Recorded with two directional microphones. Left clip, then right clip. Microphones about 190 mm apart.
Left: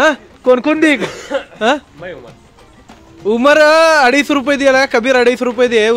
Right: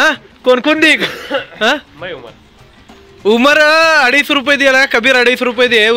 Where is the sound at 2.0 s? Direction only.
35° right (ahead or behind).